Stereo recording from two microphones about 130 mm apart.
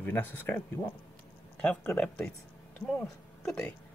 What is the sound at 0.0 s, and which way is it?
Speech, 15° left (ahead or behind).